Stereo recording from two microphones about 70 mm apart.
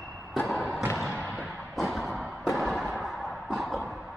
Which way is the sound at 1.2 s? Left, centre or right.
Right.